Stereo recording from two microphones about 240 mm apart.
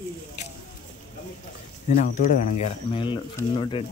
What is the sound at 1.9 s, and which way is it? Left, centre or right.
Speech, left.